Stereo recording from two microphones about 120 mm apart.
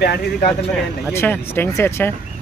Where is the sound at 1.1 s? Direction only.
20° left (ahead or behind).